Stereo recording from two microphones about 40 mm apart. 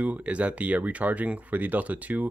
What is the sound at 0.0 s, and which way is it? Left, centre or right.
Speech, right.